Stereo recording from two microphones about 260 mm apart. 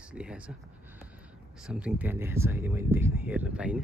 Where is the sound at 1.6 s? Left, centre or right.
Centre.